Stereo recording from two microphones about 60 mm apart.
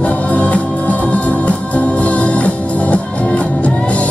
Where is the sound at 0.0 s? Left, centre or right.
Left.